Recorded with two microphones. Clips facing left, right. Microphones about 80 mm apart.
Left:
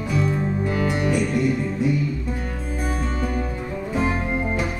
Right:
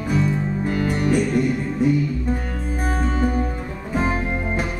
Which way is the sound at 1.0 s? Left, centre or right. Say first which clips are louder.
Right 3 dB; right.